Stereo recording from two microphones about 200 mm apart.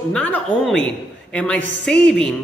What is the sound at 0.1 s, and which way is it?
Speech, 5° left (ahead or behind).